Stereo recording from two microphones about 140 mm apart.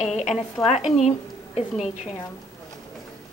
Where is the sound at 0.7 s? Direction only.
50° left (ahead or behind).